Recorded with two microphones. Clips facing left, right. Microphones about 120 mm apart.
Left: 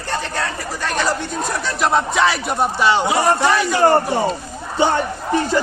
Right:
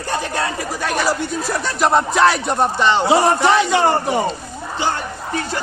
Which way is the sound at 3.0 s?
25° right (ahead or behind).